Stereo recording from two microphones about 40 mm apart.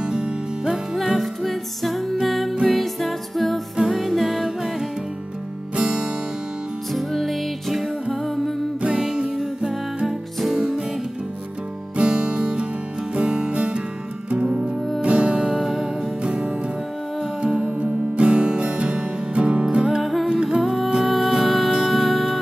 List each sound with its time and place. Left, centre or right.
0.0 s music: centre
0.9 s music: centre
3.7 s music: centre
5.8 s music: right
6.9 s music: centre
7.7 s music: centre
10.0 s music: centre
12.0 s music: right
15.5 s music: centre
16.2 s music: right
20.0 s music: centre